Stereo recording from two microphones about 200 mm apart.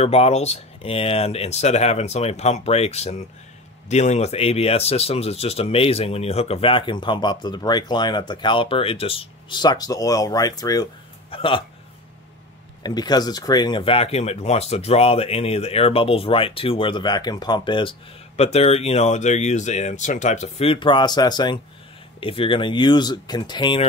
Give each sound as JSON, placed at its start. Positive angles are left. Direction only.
{"t": 0.0, "sound": "speech", "side_deg": 30}
{"t": 12.8, "sound": "speech", "side_deg": 20}